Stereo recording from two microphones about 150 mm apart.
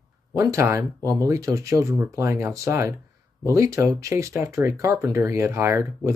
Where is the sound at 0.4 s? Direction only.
20° right (ahead or behind).